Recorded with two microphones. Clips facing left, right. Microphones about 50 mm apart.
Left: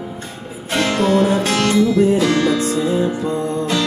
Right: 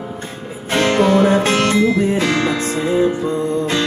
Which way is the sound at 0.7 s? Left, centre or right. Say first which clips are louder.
Right 2 dB; right.